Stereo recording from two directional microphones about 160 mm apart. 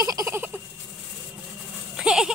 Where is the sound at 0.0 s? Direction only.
20° right (ahead or behind).